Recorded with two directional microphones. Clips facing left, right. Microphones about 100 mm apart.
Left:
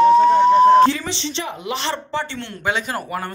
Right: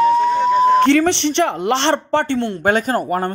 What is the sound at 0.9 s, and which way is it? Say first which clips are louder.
Speech: right 10 dB; 65° right (ahead or behind).